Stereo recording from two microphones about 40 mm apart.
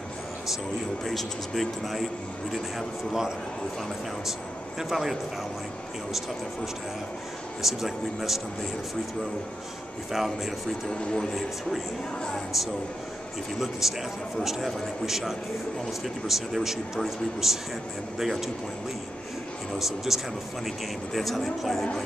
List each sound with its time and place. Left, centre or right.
1.0 s speech: centre
4.3 s speech: centre
7.6 s speech: centre
10.1 s speech: centre
10.9 s a man's voice: centre
12.5 s speech: centre
20.1 s speech: centre
20.6 s speech: centre